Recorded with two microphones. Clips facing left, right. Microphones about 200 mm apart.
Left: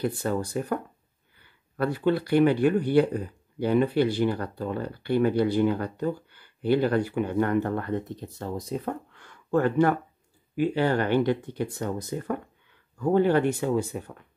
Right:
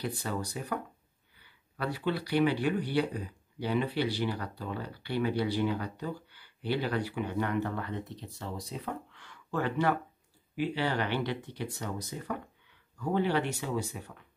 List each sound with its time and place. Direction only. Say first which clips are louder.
0.0 s speech: left 8 dB; 50° left (ahead or behind)